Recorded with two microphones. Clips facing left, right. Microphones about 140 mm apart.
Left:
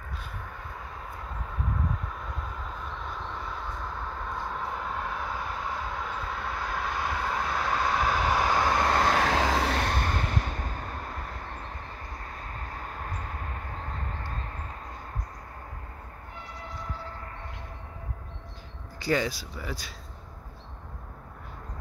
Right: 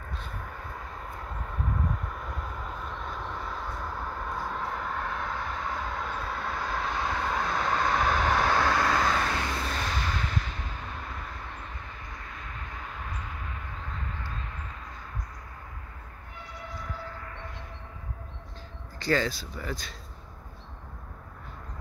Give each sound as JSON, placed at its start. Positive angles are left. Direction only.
{"t": 3.1, "sound": "vehicle", "side_deg": -5}
{"t": 9.2, "sound": "vehicle", "side_deg": 90}
{"t": 12.2, "sound": "vehicle", "side_deg": 40}
{"t": 18.9, "sound": "speech", "side_deg": 15}